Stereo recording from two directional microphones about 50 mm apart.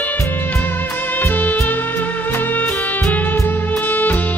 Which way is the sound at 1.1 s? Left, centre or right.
Left.